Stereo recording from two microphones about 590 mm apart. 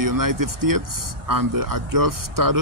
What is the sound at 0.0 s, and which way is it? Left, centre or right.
Speech, right.